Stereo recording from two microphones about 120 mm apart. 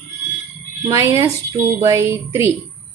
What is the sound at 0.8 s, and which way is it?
Speech, 30° right (ahead or behind).